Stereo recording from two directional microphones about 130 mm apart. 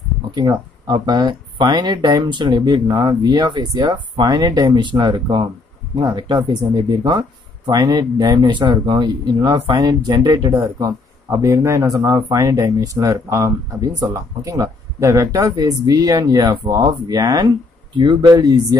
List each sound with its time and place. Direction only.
0.3 s speech: 35° right (ahead or behind)